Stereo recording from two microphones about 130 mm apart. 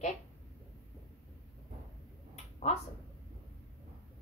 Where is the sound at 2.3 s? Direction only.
60° left (ahead or behind).